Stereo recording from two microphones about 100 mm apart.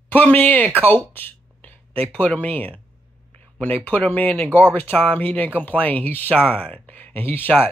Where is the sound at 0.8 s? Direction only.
20° left (ahead or behind).